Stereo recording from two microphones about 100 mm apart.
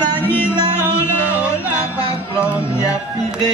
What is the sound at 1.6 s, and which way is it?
Music, 15° right (ahead or behind).